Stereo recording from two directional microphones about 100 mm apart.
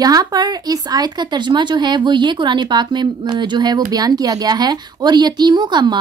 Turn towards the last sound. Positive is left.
turn(degrees=-45)  # may be behind; listen again after turning